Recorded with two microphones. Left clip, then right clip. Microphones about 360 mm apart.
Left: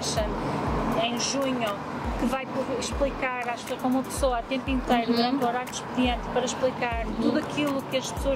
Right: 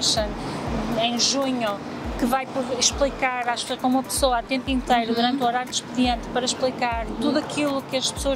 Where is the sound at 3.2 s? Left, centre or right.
Right.